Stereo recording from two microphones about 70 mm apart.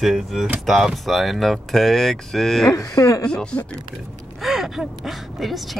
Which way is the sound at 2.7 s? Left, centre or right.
Left.